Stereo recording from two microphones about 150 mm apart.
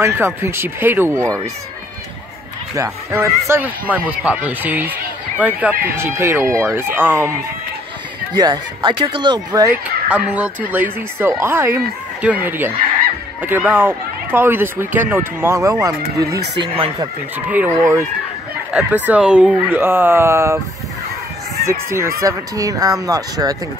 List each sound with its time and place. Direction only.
0.0 s speech: 15° right (ahead or behind)
2.7 s speech: 20° right (ahead or behind)
8.4 s speech: 30° right (ahead or behind)
9.7 s speech: 5° right (ahead or behind); by 16.3 s 25° right (ahead or behind)
16.6 s speech: 35° right (ahead or behind)
17.5 s speech: 15° right (ahead or behind)
21.6 s speech: 20° right (ahead or behind)